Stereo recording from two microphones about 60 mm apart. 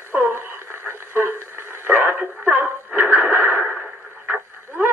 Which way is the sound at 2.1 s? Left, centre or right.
Centre.